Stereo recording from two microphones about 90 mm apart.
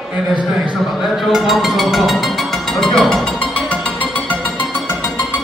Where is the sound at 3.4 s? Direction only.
15° left (ahead or behind).